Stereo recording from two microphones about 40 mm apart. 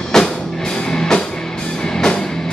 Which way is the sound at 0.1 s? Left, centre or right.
Centre.